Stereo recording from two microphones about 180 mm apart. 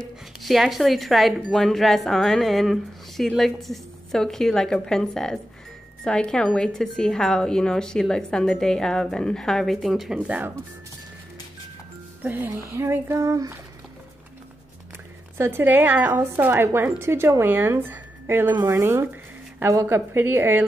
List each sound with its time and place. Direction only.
0.4 s speech: centre (ahead or behind)
12.2 s a woman's voice: 10° right (ahead or behind)
15.3 s a woman's voice: 15° right (ahead or behind)